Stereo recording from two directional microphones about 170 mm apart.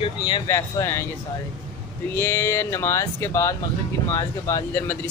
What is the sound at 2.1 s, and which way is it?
Speech, 15° left (ahead or behind).